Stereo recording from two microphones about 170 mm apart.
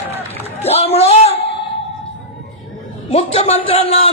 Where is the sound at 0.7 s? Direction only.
35° left (ahead or behind).